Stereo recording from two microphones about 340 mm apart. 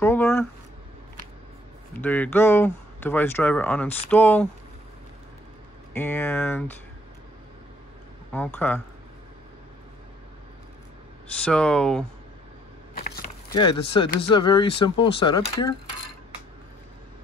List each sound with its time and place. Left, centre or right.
0.0 s a sound: centre
2.0 s speech: centre
5.9 s speech: centre
8.3 s speech: centre
11.4 s speech: centre
12.9 s a sound: left
13.6 s speech: centre